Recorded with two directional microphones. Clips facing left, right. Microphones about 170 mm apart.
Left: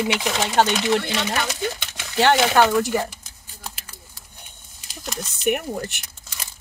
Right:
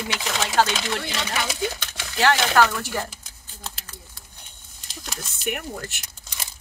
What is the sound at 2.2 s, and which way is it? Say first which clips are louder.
Speech: left 3 dB; 25° left (ahead or behind).